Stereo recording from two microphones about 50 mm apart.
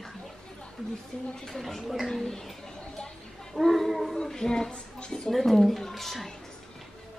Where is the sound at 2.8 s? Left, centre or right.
Centre.